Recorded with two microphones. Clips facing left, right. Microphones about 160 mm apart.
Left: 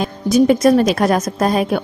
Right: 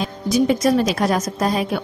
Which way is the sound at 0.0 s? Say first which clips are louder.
Left 5 dB; 50° left (ahead or behind).